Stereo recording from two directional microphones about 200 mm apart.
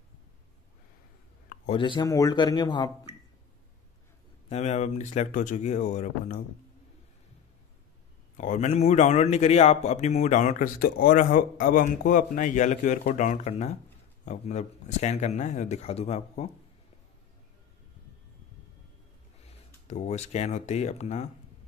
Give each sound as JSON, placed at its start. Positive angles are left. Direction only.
{"t": 1.7, "sound": "speech", "side_deg": 25}
{"t": 4.5, "sound": "speech", "side_deg": 35}
{"t": 8.4, "sound": "speech", "side_deg": 35}
{"t": 19.9, "sound": "speech", "side_deg": 35}